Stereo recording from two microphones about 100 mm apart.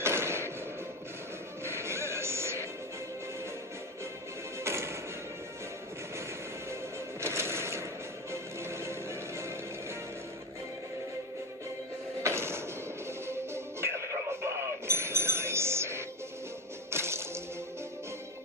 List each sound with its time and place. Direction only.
0.0 s a sound: 25° right (ahead or behind)
1.6 s music: 25° right (ahead or behind)
4.6 s music: 25° right (ahead or behind)
6.7 s music: 25° right (ahead or behind)
12.2 s music: 25° right (ahead or behind)
14.9 s chink: 25° right (ahead or behind)
16.9 s music: 25° right (ahead or behind)